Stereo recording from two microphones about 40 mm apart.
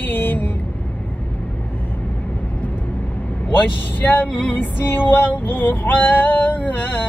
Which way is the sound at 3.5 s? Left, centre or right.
Left.